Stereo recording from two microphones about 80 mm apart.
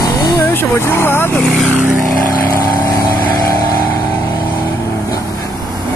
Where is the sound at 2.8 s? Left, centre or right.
Left.